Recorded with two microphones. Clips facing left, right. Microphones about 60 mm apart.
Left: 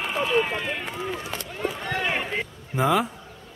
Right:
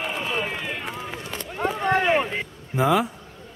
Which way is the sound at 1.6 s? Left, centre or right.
Right.